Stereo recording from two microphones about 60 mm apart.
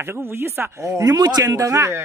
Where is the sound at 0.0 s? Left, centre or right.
Right.